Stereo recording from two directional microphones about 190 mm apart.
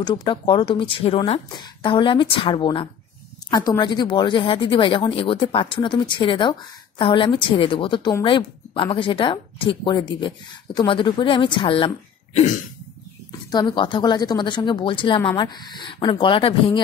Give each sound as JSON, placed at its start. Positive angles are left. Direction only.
{"t": 0.0, "sound": "a woman's voice", "side_deg": 25}
{"t": 13.5, "sound": "a woman's voice", "side_deg": 25}